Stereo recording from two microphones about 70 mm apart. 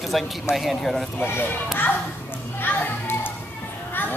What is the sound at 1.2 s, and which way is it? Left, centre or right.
Speech, left.